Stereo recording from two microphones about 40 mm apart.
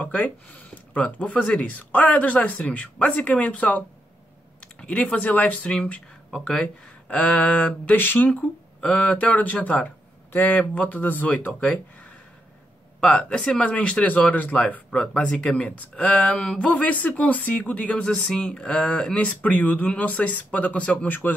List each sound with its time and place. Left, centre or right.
0.0 s speech: left
5.5 s speech: left
6.3 s speech: centre
6.6 s speech: left
7.9 s speech: left
8.9 s speech: left
10.3 s speech: left
11.6 s speech: left
16.8 s speech: left
17.8 s speech: left
18.2 s speech: centre
19.1 s speech: left